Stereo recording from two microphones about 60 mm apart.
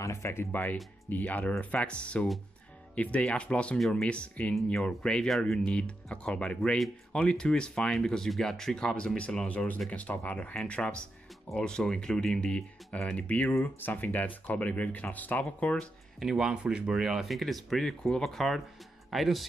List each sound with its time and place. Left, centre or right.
0.0 s speech: left
0.5 s speech: left
13.6 s speech: left
16.2 s speech: centre
17.0 s speech: centre